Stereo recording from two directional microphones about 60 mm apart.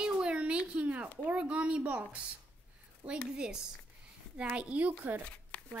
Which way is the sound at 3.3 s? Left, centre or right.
Centre.